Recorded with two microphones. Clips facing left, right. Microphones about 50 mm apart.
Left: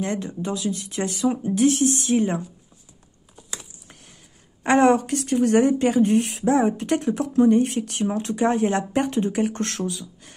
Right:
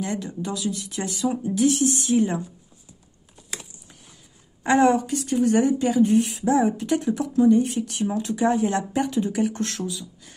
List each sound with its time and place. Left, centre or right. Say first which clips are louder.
0.0 s speech: left 2 dB; left
4.6 s speech: left 1 dB; left